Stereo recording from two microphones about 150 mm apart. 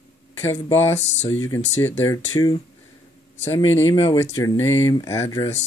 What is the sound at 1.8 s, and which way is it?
Speech, 15° left (ahead or behind).